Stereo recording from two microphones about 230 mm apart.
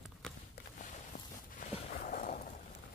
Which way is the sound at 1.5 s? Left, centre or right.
Left.